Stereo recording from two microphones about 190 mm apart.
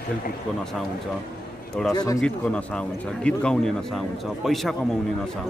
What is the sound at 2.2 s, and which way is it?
A man's voice, 5° left (ahead or behind).